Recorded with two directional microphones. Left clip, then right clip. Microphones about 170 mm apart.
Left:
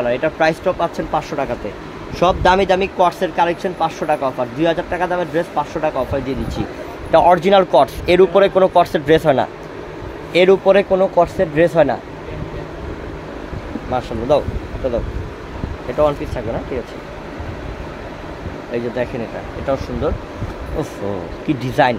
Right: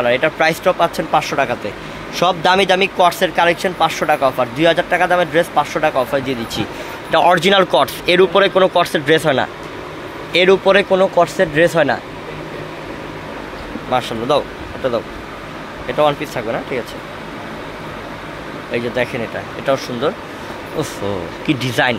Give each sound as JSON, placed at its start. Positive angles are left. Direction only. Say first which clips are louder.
{"t": 0.0, "sound": "speech", "louder": "right 2 dB", "side_deg": -5}
{"t": 13.9, "sound": "speech", "louder": "right 1 dB", "side_deg": -5}
{"t": 15.9, "sound": "speech", "louder": "right 1 dB", "side_deg": -5}
{"t": 18.7, "sound": "speech", "louder": "right 2 dB", "side_deg": 0}
{"t": 21.5, "sound": "speech", "louder": "left 1 dB", "side_deg": 5}